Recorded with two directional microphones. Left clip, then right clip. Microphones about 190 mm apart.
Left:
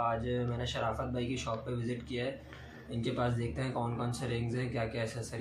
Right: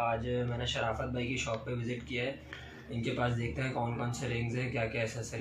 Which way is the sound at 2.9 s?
15° left (ahead or behind).